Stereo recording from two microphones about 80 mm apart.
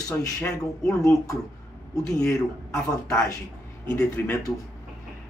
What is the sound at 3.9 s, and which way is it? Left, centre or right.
Speech, left.